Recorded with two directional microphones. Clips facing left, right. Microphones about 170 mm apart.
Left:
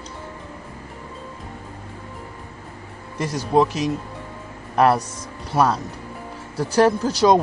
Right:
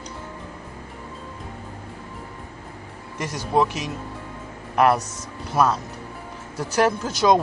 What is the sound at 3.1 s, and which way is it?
Speech, 35° left (ahead or behind).